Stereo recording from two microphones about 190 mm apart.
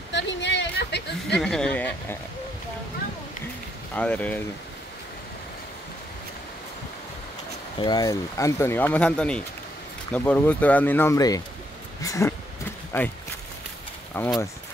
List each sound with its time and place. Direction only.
0.1 s a sound: 70° left (ahead or behind)
1.4 s speech: 5° left (ahead or behind)
3.9 s speech: 5° left (ahead or behind)
7.8 s speech: 20° left (ahead or behind)
14.2 s speech: 10° left (ahead or behind)